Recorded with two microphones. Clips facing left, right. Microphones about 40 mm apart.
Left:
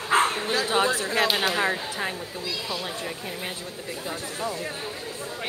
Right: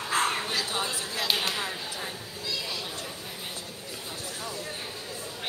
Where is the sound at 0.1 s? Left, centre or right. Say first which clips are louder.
Left 6 dB; left.